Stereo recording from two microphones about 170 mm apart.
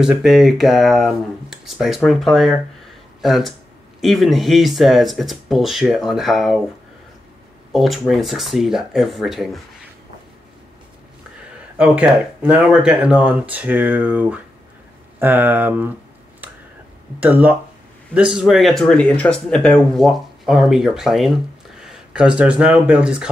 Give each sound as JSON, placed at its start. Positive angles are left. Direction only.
{"t": 0.0, "sound": "speech", "side_deg": 0}
{"t": 7.7, "sound": "speech", "side_deg": 0}
{"t": 11.8, "sound": "speech", "side_deg": -10}
{"t": 17.2, "sound": "speech", "side_deg": -10}